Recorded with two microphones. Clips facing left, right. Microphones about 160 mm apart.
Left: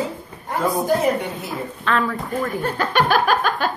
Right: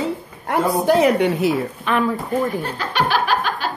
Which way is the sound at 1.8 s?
20° right (ahead or behind).